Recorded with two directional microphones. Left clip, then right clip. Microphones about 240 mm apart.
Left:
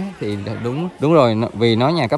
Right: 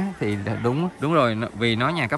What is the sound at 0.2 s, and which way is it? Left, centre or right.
Speech, centre.